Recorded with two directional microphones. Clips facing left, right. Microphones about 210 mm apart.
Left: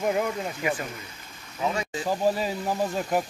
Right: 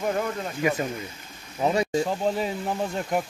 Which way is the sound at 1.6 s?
35° right (ahead or behind).